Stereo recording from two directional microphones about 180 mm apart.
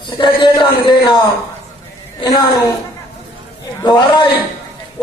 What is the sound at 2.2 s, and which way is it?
Speech, 25° left (ahead or behind).